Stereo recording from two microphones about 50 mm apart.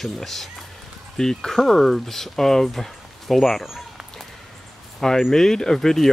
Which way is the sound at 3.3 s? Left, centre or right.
Centre.